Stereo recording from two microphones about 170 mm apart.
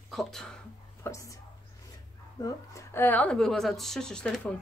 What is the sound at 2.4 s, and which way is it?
A woman's voice, 15° left (ahead or behind).